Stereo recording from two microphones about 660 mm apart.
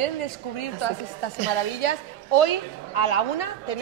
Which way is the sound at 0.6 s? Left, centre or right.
Left.